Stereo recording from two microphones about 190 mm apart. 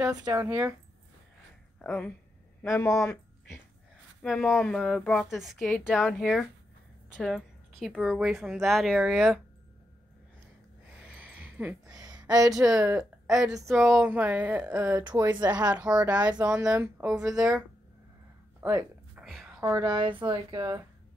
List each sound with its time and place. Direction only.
0.0 s speech: 15° right (ahead or behind)
1.8 s speech: 5° left (ahead or behind)
4.2 s a woman's voice: 5° left (ahead or behind)
11.1 s a sound: 5° right (ahead or behind)
12.4 s a woman's voice: centre (ahead or behind)
18.6 s a sound: 10° right (ahead or behind)
19.6 s speech: 20° right (ahead or behind)